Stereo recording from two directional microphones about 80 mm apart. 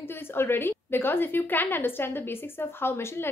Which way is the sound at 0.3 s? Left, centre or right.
Left.